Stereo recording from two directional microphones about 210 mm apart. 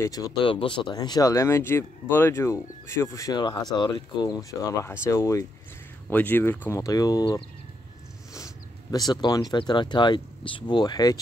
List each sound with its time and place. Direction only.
0.0 s speech: 15° left (ahead or behind)
8.9 s speech: 20° left (ahead or behind)